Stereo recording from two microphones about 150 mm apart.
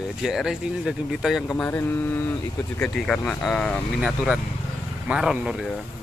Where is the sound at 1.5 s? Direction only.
15° left (ahead or behind).